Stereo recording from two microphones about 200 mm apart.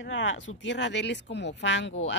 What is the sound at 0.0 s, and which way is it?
Speech, 70° left (ahead or behind).